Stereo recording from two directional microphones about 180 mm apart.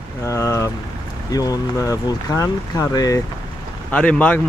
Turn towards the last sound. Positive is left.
turn(degrees=10)  # may be behind; listen again after turning